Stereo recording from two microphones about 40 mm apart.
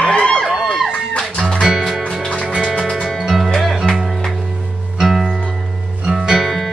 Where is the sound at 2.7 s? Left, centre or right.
Centre.